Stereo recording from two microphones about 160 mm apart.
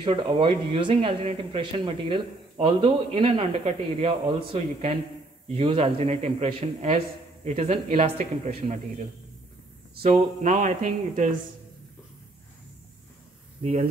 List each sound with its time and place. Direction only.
0.0 s speech: 30° right (ahead or behind)
10.0 s speech: 50° right (ahead or behind)
13.6 s speech: 40° right (ahead or behind)